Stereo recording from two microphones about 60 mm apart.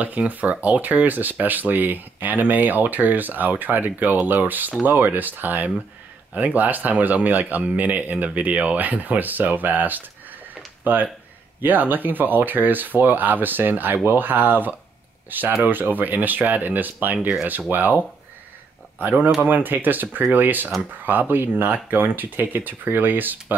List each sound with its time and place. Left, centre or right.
0.3 s speech: right